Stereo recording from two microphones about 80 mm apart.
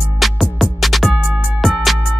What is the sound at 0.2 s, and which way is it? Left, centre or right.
Music, centre.